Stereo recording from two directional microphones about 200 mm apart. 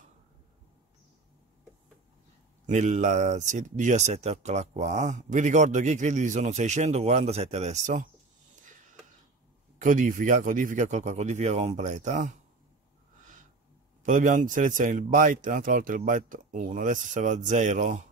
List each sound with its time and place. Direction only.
2.6 s speech: 35° right (ahead or behind)
8.5 s a sound: 40° right (ahead or behind)
9.8 s speech: 40° right (ahead or behind)
14.0 s speech: 40° right (ahead or behind)